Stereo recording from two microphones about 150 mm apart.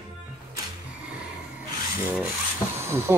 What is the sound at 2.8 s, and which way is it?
Speech, 15° right (ahead or behind).